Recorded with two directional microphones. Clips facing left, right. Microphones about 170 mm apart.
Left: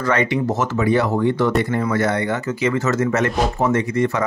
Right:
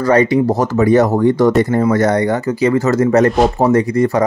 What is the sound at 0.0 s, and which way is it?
Speech, 35° right (ahead or behind).